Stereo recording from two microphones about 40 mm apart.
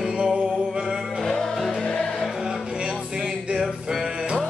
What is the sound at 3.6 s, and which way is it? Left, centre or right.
Music, centre.